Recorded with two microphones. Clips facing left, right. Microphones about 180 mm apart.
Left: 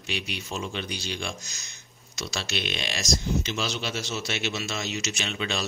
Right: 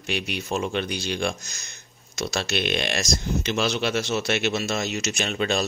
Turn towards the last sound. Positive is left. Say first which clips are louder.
# right 6 dB
turn(degrees=-50)  # may be behind; listen again after turning